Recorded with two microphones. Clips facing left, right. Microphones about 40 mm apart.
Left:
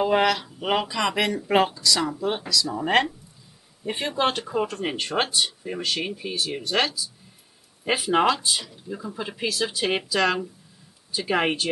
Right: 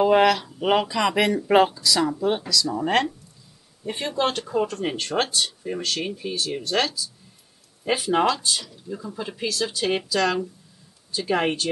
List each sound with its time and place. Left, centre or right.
0.0 s speech: centre